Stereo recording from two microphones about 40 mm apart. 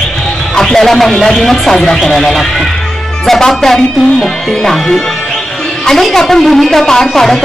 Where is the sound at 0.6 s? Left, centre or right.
Centre.